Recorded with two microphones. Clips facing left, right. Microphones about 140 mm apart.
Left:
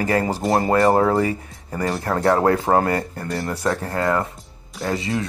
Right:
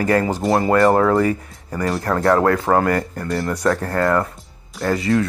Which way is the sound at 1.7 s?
30° left (ahead or behind).